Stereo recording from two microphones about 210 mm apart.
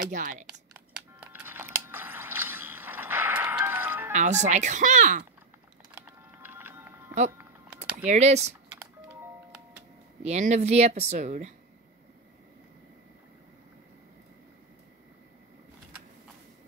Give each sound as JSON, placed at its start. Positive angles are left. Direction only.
{"t": 0.1, "sound": "speech", "side_deg": -35}
{"t": 0.5, "sound": "a sound", "side_deg": -5}
{"t": 4.1, "sound": "speech", "side_deg": -35}
{"t": 6.3, "sound": "music", "side_deg": -10}
{"t": 8.0, "sound": "speech", "side_deg": -35}
{"t": 10.2, "sound": "speech", "side_deg": -35}